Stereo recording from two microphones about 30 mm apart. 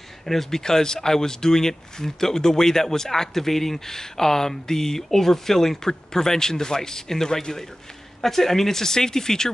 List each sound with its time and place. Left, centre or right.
0.2 s speech: centre
0.6 s speech: left
8.2 s speech: centre